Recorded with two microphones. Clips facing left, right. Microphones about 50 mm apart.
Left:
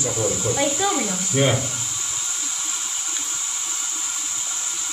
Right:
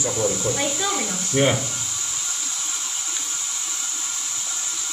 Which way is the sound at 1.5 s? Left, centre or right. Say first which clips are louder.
Left 1 dB; centre.